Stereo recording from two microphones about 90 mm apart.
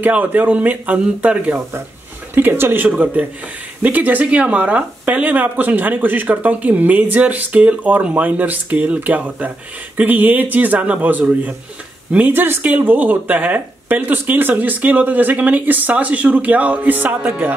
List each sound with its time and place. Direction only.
0.0 s speech: 20° right (ahead or behind)